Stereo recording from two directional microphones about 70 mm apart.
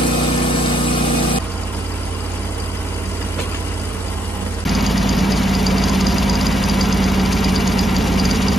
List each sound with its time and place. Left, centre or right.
4.6 s engine: centre